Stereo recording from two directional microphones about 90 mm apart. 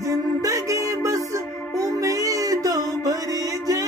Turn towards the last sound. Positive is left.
turn(degrees=-40)  # may be behind; listen again after turning